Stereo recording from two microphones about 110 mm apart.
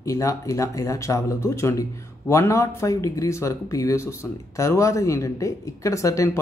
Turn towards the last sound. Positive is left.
turn(degrees=30)  # may be behind; listen again after turning